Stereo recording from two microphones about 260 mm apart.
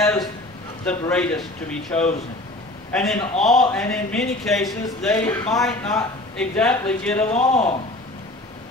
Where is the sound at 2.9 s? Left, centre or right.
Centre.